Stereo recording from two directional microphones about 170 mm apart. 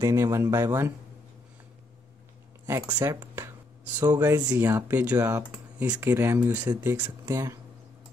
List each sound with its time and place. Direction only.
0.0 s speech: 15° right (ahead or behind)
3.0 s speech: 15° right (ahead or behind)